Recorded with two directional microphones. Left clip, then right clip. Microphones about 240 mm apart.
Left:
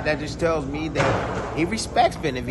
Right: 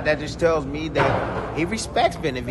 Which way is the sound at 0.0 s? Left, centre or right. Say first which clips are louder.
Right 3 dB; centre.